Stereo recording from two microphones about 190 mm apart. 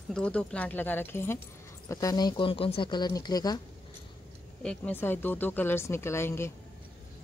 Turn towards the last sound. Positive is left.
turn(degrees=15)  # may be behind; listen again after turning